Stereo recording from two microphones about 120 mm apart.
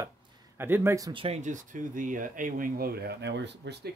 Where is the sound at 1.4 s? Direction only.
90° right.